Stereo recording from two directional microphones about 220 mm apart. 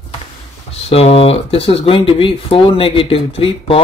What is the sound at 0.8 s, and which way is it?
Speech, 25° left (ahead or behind).